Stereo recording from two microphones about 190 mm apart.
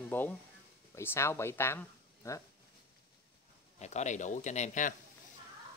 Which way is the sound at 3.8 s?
35° left (ahead or behind).